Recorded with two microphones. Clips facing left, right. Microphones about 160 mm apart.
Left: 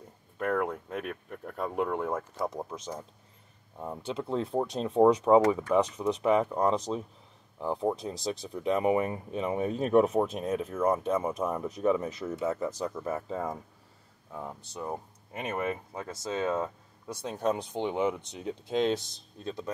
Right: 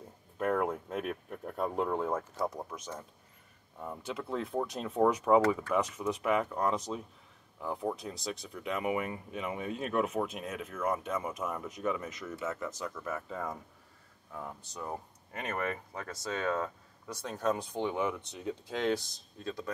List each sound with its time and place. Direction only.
0.4 s speech: 15° right (ahead or behind)
0.8 s speech: centre (ahead or behind)
2.0 s speech: 10° left (ahead or behind)
2.5 s speech: 25° left (ahead or behind)